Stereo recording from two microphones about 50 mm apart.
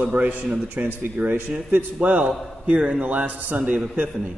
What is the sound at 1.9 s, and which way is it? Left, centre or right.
A man's voice, right.